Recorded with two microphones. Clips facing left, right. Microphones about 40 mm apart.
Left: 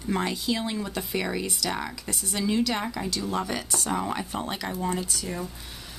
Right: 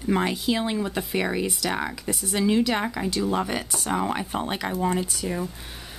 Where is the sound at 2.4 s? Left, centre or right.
Centre.